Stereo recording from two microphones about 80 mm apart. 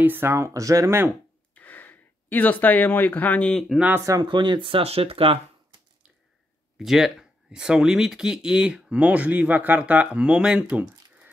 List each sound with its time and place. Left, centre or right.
0.0 s speech: right
0.5 s speech: right
1.5 s gasp: left
3.5 s speech: centre
4.0 s speech: right
4.3 s speech: right
6.8 s speech: centre